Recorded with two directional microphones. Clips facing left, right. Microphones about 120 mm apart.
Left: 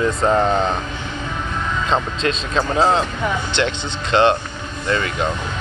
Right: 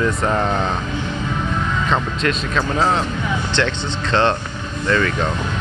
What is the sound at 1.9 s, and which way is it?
Speech, 25° left (ahead or behind).